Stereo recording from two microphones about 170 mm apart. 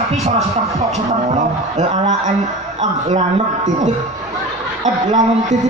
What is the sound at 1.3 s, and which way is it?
A man's voice, 45° right (ahead or behind).